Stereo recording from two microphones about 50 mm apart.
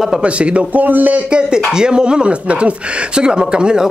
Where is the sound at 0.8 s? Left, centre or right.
Right.